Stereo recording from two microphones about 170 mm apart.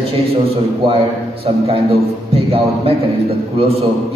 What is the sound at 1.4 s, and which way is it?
A man's voice, 35° right (ahead or behind).